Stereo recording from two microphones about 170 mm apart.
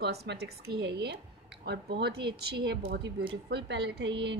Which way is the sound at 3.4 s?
85° right.